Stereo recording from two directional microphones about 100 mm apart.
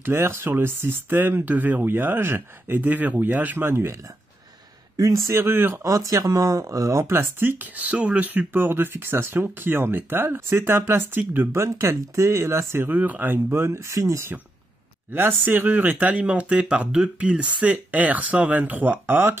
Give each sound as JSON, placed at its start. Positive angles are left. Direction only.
{"t": 0.0, "sound": "speech", "side_deg": -25}